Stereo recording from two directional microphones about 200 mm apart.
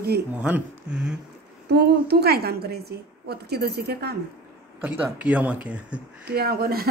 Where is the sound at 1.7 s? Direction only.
55° right (ahead or behind).